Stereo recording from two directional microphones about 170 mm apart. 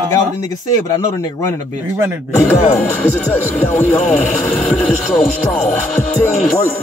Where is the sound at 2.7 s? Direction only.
10° left (ahead or behind).